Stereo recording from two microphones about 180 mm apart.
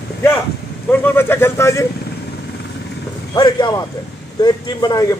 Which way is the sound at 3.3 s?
20° left (ahead or behind).